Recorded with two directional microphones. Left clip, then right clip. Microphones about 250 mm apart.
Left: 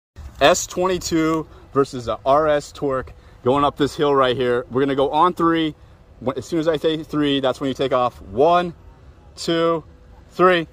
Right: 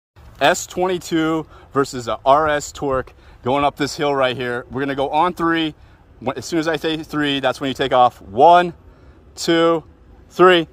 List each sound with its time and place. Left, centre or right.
0.4 s speech: centre
3.4 s speech: centre